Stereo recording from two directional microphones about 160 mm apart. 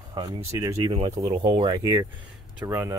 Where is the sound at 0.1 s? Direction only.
25° right (ahead or behind).